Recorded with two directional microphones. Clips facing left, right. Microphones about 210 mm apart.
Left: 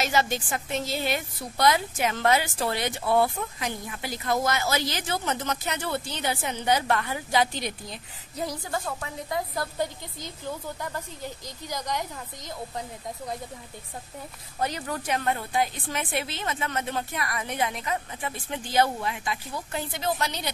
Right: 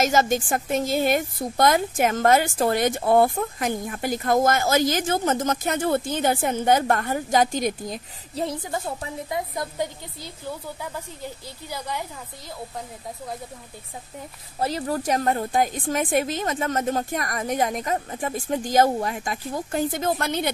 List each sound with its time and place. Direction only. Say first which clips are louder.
0.0 s a woman's voice: right 5 dB; 45° right (ahead or behind)
8.4 s a woman's voice: right 3 dB; 25° right (ahead or behind)
10.8 s speech: right 1 dB; 10° right (ahead or behind)
14.6 s a woman's voice: right 5 dB; 35° right (ahead or behind); by 20.5 s 55° right (ahead or behind)